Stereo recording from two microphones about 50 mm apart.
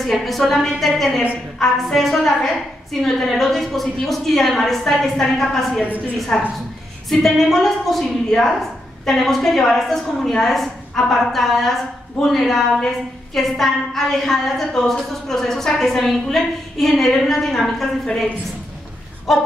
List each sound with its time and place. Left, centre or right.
0.0 s a woman's voice: centre
5.9 s a woman's voice: right
6.1 s a woman's voice: centre
19.3 s a woman's voice: centre